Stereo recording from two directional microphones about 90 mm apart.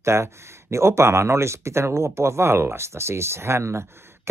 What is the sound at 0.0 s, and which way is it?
Speech, 30° right (ahead or behind).